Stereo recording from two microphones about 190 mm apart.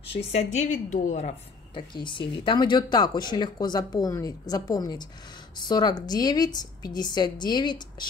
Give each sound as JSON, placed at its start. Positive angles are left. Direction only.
{"t": 0.1, "sound": "a woman's voice", "side_deg": 35}
{"t": 1.8, "sound": "speech", "side_deg": 25}